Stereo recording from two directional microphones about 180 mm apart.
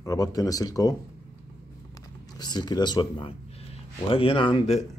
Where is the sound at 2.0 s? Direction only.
20° left (ahead or behind).